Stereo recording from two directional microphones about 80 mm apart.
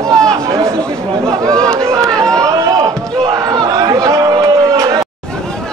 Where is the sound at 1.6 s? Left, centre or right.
Centre.